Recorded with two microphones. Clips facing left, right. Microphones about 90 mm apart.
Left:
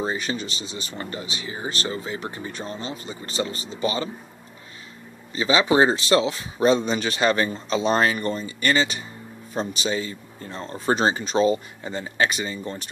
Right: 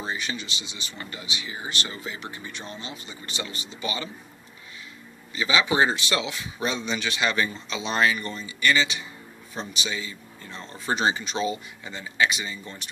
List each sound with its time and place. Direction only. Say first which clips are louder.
0.0 s speech: left 5 dB; 35° left (ahead or behind)
5.3 s speech: left 4 dB; 35° left (ahead or behind)